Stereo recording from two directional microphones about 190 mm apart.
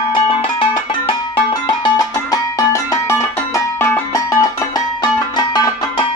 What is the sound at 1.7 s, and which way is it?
Music, 20° left (ahead or behind).